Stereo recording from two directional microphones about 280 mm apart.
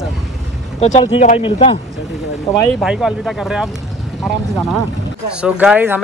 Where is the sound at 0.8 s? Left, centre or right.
Left.